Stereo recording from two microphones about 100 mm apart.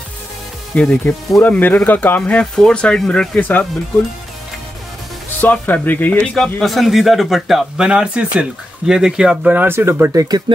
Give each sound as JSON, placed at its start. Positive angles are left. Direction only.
{"t": 0.7, "sound": "speech", "side_deg": 15}
{"t": 5.4, "sound": "speech", "side_deg": 15}
{"t": 6.3, "sound": "speech", "side_deg": 0}